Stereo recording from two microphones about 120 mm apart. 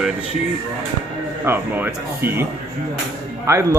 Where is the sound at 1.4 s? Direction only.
15° right (ahead or behind).